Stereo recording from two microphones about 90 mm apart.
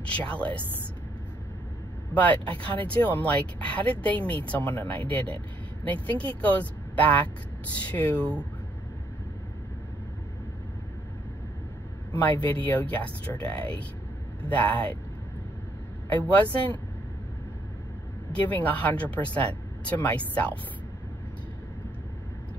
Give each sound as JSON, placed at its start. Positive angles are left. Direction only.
{"t": 0.1, "sound": "speech", "side_deg": 15}
{"t": 2.1, "sound": "speech", "side_deg": 20}
{"t": 12.4, "sound": "speech", "side_deg": 20}
{"t": 14.5, "sound": "speech", "side_deg": 15}
{"t": 16.1, "sound": "speech", "side_deg": 20}
{"t": 18.3, "sound": "speech", "side_deg": 15}